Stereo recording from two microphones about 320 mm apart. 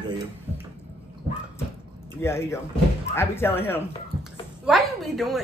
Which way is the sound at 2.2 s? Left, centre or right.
Centre.